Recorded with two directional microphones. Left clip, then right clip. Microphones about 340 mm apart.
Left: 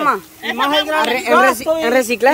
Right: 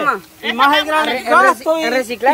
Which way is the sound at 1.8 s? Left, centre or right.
Left.